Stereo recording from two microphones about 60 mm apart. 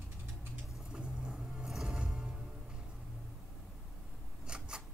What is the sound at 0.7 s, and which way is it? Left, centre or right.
Vehicle, centre.